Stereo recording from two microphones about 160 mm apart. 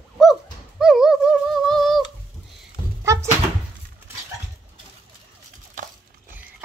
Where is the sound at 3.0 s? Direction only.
20° right (ahead or behind).